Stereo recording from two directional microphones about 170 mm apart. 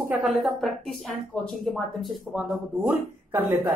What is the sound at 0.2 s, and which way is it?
Speech, centre (ahead or behind).